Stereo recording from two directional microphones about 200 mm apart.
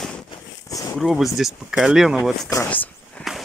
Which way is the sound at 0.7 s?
15° left (ahead or behind).